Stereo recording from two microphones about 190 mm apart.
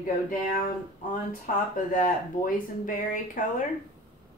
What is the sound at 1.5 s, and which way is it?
Speech, 45° left (ahead or behind).